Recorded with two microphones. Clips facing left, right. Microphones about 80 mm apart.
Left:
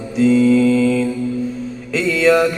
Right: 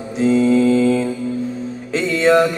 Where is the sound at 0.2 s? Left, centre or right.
Right.